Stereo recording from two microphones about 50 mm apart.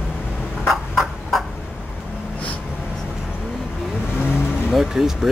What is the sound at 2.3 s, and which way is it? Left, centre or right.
Vehicle, left.